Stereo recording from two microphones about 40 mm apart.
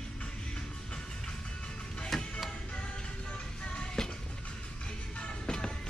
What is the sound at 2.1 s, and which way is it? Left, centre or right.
Music, centre.